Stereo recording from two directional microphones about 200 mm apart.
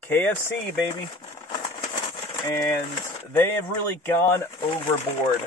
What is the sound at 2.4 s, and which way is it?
Speech, 10° left (ahead or behind).